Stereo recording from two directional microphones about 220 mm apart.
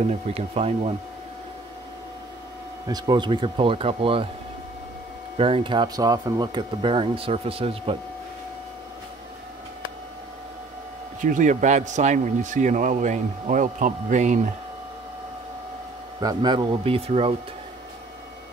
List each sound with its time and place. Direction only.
0.0 s speech: 30° right (ahead or behind)
2.9 s speech: 20° right (ahead or behind)
5.4 s speech: 25° right (ahead or behind)
11.1 s a man's voice: 35° right (ahead or behind)
16.2 s speech: 20° right (ahead or behind)